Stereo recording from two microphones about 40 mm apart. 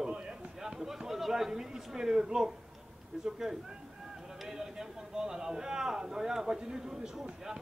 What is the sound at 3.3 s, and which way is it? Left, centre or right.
A man's voice, centre.